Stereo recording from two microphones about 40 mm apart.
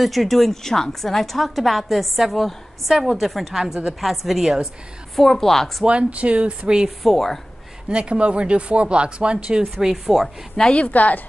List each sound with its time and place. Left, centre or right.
0.0 s a woman's voice: centre
5.1 s a woman's voice: centre
5.9 s speech: right
7.0 s a woman's voice: centre
7.9 s speech: right
9.8 s speech: centre
10.7 s a woman's voice: left